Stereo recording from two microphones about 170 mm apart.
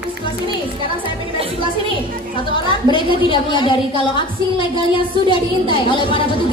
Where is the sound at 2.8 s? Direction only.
30° left (ahead or behind).